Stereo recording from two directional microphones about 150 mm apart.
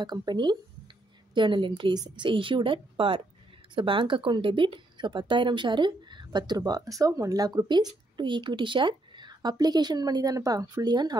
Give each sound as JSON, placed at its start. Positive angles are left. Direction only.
{"t": 0.0, "sound": "speech", "side_deg": -30}